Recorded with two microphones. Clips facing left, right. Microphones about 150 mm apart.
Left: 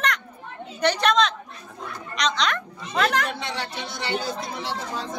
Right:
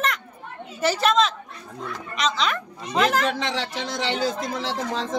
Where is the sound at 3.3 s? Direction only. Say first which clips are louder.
Right 4 dB; 90° right.